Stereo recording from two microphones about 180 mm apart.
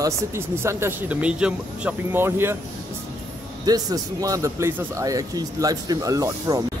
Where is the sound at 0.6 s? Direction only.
15° right (ahead or behind).